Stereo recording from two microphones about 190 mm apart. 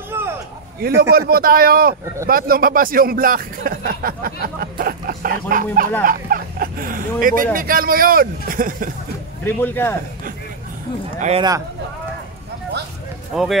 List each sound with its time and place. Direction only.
0.1 s a sound: 15° right (ahead or behind)
0.7 s speech: 55° right (ahead or behind)
9.4 s speech: 10° left (ahead or behind)
11.1 s a man's voice: 35° right (ahead or behind)
13.3 s speech: 5° right (ahead or behind)